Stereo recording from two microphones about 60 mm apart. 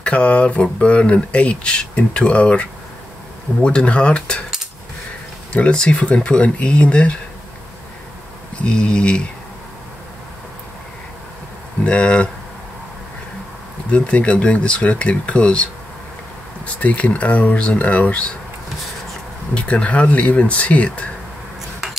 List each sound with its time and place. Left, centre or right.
0.0 s speech: left
5.5 s speech: centre
8.6 s speech: centre
11.8 s speech: centre
13.8 s speech: left
19.5 s speech: left